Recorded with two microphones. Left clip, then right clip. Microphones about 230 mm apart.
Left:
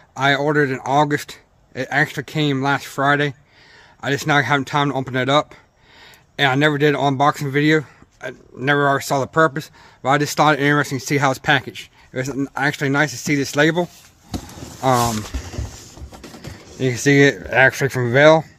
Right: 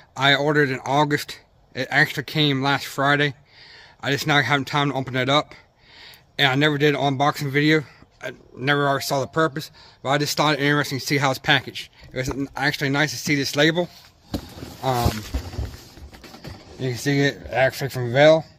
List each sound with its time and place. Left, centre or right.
0.1 s a man's voice: centre
14.8 s speech: left
16.8 s speech: left